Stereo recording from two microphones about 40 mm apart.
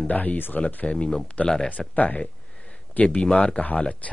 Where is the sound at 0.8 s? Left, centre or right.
Left.